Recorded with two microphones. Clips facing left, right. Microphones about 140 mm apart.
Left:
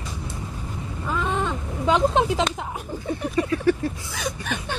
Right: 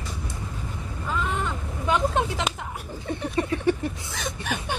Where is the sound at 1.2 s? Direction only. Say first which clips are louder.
Left 5 dB; 20° left (ahead or behind).